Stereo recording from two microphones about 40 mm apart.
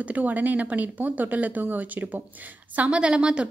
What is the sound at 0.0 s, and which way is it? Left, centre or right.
Speech, right.